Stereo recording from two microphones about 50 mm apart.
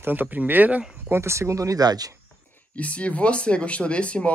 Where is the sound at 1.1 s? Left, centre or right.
Right.